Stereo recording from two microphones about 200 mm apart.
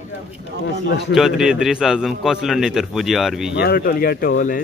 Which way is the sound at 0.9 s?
60° left (ahead or behind).